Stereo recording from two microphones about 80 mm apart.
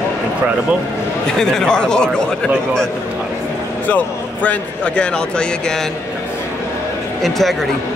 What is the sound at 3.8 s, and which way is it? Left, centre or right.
A man's voice, centre.